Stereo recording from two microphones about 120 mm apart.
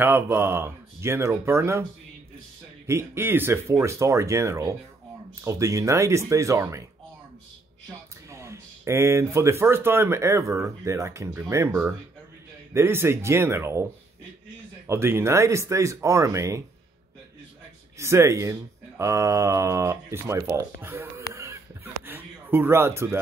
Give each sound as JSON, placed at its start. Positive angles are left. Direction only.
{"t": 0.0, "sound": "speech", "side_deg": -20}
{"t": 2.9, "sound": "speech", "side_deg": -20}
{"t": 8.3, "sound": "speech", "side_deg": -25}
{"t": 12.7, "sound": "speech", "side_deg": -20}
{"t": 14.9, "sound": "speech", "side_deg": -20}
{"t": 17.9, "sound": "speech", "side_deg": -25}
{"t": 22.0, "sound": "a sound", "side_deg": -15}